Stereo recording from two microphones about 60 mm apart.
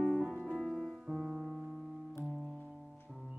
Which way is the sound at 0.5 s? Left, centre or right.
Centre.